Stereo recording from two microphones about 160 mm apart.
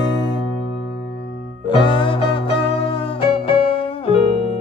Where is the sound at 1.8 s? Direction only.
30° left (ahead or behind).